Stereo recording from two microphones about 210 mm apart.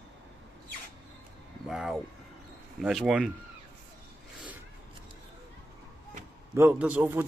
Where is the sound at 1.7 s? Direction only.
Centre (ahead or behind).